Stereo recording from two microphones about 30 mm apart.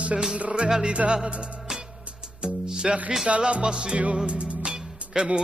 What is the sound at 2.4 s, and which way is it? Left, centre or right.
Music, right.